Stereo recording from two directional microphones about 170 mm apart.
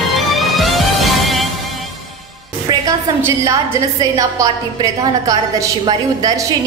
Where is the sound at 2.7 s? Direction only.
25° right (ahead or behind).